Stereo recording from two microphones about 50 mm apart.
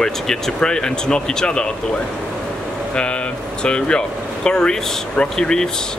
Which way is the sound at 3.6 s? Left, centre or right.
Centre.